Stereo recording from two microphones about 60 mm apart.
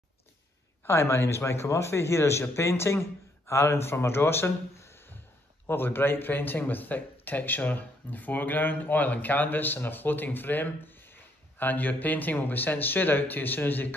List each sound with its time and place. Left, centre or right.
0.8 s a man's voice: left